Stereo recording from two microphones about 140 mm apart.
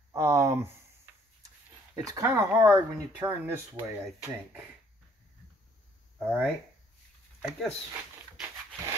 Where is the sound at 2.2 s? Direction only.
10° right (ahead or behind).